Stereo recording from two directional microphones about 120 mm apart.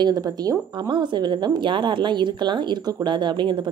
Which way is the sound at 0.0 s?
35° right (ahead or behind).